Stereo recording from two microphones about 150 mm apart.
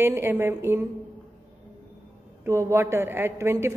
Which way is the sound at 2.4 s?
20° right (ahead or behind).